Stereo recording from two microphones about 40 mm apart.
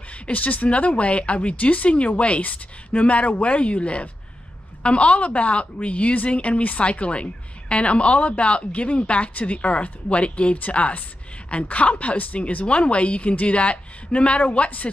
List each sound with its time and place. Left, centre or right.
0.3 s a woman's voice: left